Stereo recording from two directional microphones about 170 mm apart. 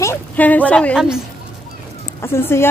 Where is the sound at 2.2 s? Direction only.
15° left (ahead or behind).